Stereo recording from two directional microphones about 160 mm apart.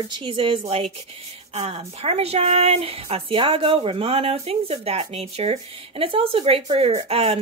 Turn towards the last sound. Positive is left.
turn(degrees=-40)  # may be behind; listen again after turning